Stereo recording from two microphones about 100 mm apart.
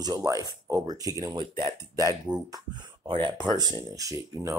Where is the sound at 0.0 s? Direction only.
35° right (ahead or behind).